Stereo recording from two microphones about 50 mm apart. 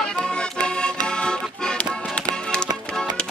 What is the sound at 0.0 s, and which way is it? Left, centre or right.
Music, centre.